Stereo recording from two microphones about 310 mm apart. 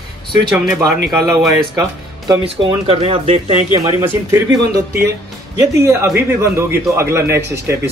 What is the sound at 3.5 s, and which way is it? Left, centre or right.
Speech, centre.